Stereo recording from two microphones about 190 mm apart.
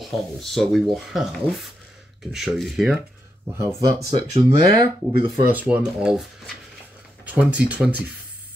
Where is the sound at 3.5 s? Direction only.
15° right (ahead or behind).